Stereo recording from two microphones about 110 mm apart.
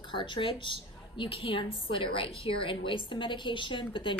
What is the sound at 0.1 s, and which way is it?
A woman's voice, 50° left (ahead or behind).